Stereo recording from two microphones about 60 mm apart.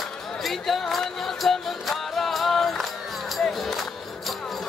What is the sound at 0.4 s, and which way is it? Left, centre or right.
Music, centre.